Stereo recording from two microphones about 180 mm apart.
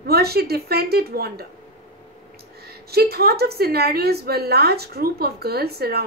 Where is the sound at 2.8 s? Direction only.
60° right (ahead or behind).